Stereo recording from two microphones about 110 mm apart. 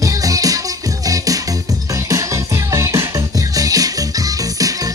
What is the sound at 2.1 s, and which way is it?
Music, 30° right (ahead or behind).